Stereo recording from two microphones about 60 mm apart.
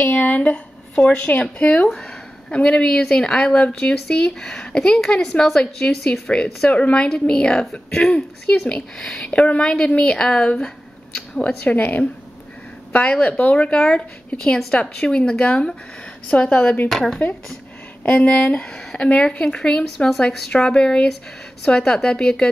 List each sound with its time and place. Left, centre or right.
0.0 s a woman's voice: left
11.6 s speech: left
13.7 s a woman's voice: centre
16.9 s speech: centre
18.0 s speech: left
18.7 s a woman's voice: centre